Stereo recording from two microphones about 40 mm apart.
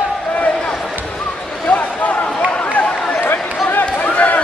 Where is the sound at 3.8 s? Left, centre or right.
Left.